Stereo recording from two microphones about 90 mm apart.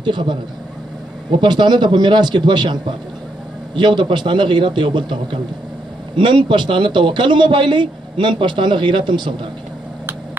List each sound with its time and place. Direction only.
0.0 s a man's voice: 60° right (ahead or behind)